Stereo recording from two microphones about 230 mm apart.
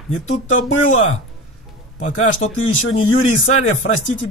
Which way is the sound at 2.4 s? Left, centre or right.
Left.